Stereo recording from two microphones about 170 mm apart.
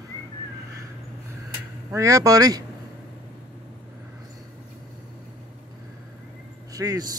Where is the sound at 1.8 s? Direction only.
15° right (ahead or behind).